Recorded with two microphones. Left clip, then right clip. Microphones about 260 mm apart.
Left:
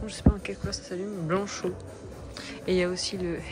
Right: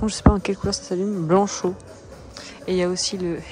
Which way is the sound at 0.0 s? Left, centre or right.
Right.